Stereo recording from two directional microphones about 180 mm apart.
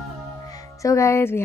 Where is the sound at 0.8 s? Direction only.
15° left (ahead or behind).